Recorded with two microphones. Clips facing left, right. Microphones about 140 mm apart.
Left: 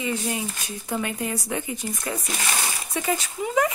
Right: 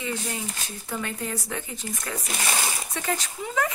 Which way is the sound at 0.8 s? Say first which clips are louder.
Left 4 dB; 15° left (ahead or behind).